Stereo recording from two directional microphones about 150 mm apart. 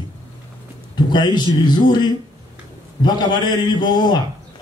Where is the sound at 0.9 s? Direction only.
30° left (ahead or behind).